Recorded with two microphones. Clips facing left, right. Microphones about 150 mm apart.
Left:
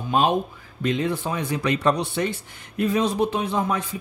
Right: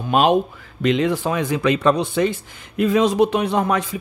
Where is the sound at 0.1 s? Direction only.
80° right.